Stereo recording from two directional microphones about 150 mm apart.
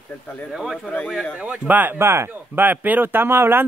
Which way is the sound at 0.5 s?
5° right (ahead or behind).